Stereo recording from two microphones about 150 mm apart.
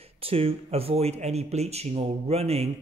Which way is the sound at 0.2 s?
40° right (ahead or behind).